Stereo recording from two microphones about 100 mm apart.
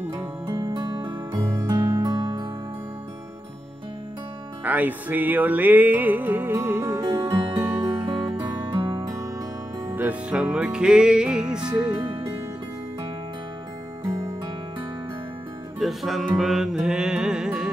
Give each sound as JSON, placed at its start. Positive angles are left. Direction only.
{"t": 0.5, "sound": "music", "side_deg": -45}
{"t": 1.3, "sound": "music", "side_deg": -35}
{"t": 4.6, "sound": "music", "side_deg": -15}
{"t": 8.0, "sound": "music", "side_deg": -45}
{"t": 9.8, "sound": "music", "side_deg": -20}
{"t": 10.3, "sound": "music", "side_deg": -10}
{"t": 15.8, "sound": "music", "side_deg": 0}